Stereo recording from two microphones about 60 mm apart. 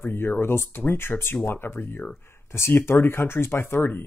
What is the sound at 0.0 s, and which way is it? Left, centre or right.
Speech, left.